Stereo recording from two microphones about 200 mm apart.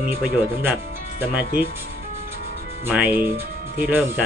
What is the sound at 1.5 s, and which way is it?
Speech, 45° right (ahead or behind).